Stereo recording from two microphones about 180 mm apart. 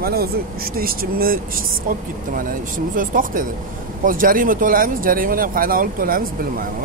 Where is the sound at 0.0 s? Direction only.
60° right (ahead or behind).